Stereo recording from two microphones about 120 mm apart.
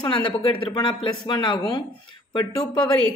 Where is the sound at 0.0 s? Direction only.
40° left (ahead or behind).